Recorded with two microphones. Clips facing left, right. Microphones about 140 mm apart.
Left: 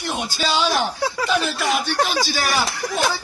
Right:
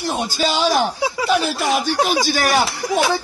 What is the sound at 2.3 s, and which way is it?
Speech, 50° right (ahead or behind).